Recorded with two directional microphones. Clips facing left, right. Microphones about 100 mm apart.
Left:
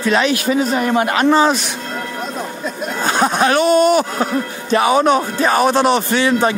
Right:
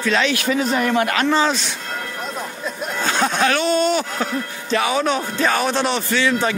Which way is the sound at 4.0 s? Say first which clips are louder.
Left 5 dB; 15° left (ahead or behind).